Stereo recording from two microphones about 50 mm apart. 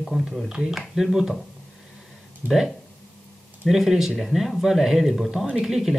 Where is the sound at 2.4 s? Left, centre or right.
Right.